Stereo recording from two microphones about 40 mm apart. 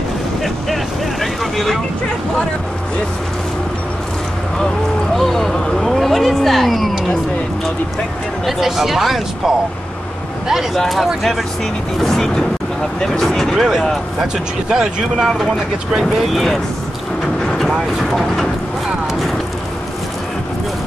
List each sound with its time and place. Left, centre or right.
1.2 s vehicle: centre
5.1 s a sound: centre
8.5 s speech: centre
10.7 s speech: centre
13.6 s speech: centre
14.2 s speech: centre
16.2 s speech: centre
18.1 s speech: centre